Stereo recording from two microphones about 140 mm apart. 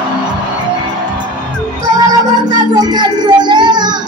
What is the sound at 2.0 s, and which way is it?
Music, 30° right (ahead or behind).